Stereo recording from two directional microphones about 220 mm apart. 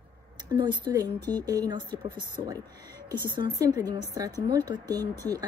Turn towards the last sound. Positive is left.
turn(degrees=-15)  # may be behind; listen again after turning